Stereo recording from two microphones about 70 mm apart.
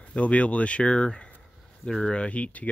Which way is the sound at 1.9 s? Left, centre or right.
Centre.